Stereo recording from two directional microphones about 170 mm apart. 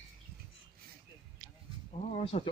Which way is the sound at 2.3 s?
35° left (ahead or behind).